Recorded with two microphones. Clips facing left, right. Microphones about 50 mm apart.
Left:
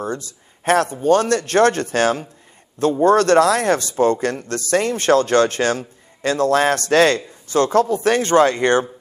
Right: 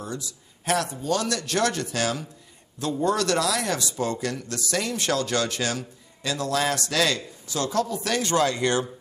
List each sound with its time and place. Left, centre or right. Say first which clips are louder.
0.0 s speech: left 8 dB; left